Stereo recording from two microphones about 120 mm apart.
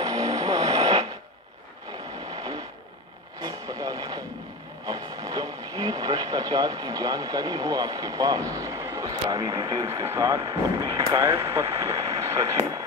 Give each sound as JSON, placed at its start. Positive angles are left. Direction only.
{"t": 0.0, "sound": "vehicle", "side_deg": -30}
{"t": 3.4, "sound": "a sound", "side_deg": -35}
{"t": 4.8, "sound": "speech", "side_deg": -35}